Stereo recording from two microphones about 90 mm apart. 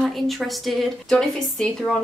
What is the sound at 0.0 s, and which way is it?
A woman's voice, centre (ahead or behind).